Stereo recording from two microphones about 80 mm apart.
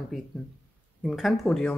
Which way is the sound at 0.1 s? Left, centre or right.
Centre.